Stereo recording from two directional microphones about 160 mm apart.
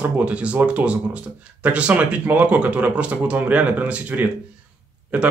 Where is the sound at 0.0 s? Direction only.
10° right (ahead or behind).